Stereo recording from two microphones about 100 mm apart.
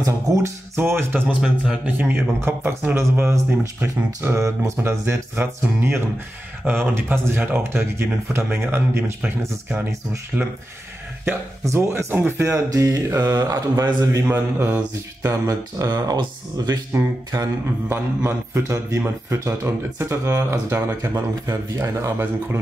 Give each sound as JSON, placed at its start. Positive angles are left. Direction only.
{"t": 0.0, "sound": "speech", "side_deg": -35}
{"t": 0.7, "sound": "a man's voice", "side_deg": -25}
{"t": 1.4, "sound": "a man's voice", "side_deg": -10}
{"t": 10.3, "sound": "a man's voice", "side_deg": -20}
{"t": 11.2, "sound": "a man's voice", "side_deg": -30}
{"t": 14.2, "sound": "a man's voice", "side_deg": -20}
{"t": 15.2, "sound": "speech", "side_deg": -30}
{"t": 17.8, "sound": "a man's voice", "side_deg": -20}